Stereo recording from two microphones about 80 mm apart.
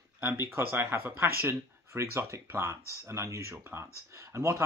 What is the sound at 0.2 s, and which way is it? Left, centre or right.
Speech, right.